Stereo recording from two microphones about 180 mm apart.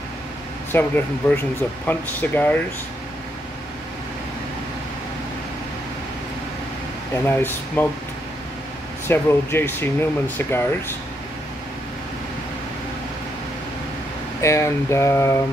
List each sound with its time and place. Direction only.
0.7 s speech: 10° left (ahead or behind)
7.2 s speech: 10° left (ahead or behind)
9.0 s speech: 15° left (ahead or behind)
14.4 s speech: 15° left (ahead or behind)